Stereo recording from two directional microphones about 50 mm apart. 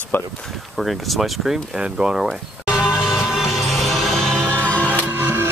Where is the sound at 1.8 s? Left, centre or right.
Centre.